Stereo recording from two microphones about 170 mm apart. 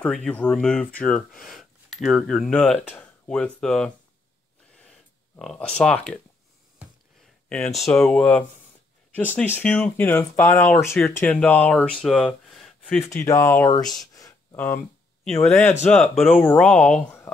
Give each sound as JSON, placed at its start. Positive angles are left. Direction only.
{"t": 0.0, "sound": "speech", "side_deg": 5}
{"t": 4.8, "sound": "a sound", "side_deg": 5}
{"t": 7.4, "sound": "speech", "side_deg": 5}
{"t": 13.1, "sound": "speech", "side_deg": 15}
{"t": 13.7, "sound": "speech", "side_deg": 0}
{"t": 14.1, "sound": "a sound", "side_deg": 20}
{"t": 15.4, "sound": "speech", "side_deg": 10}